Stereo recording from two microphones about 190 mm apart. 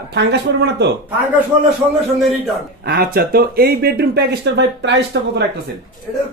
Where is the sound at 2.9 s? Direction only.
50° right (ahead or behind).